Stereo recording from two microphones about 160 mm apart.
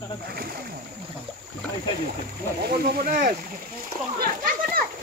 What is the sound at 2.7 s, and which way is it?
A child's voice, 70° right (ahead or behind).